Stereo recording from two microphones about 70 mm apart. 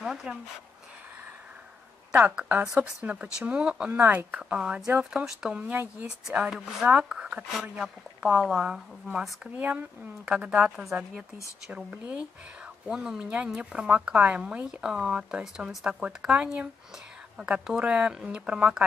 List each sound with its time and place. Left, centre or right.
0.0 s speech: centre
2.1 s speech: right
4.0 s speech: right
5.6 s speech: right
6.5 s speech: centre
7.8 s speech: centre; by 10.3 s right
10.4 s speech: centre
11.7 s speech: right
12.8 s speech: centre